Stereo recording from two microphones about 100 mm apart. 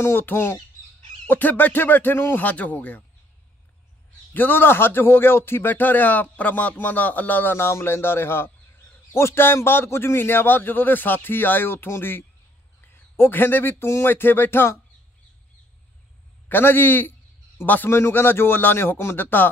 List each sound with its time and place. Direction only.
0.0 s speech: 20° left (ahead or behind)
4.3 s speech: 20° left (ahead or behind)
16.4 s speech: 20° left (ahead or behind)